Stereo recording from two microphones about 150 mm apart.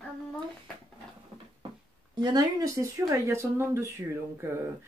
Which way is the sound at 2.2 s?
25° right (ahead or behind).